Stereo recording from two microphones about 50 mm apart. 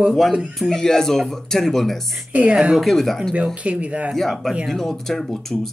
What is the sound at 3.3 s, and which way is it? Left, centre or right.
Speech, right.